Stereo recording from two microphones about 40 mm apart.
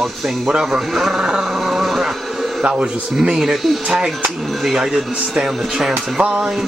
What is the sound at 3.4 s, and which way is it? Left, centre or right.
A man's voice, centre.